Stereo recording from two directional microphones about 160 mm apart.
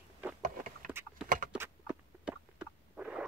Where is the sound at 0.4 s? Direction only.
60° right (ahead or behind).